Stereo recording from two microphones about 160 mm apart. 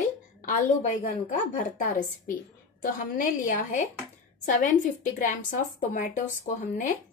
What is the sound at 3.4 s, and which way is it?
A woman's voice, 50° left (ahead or behind).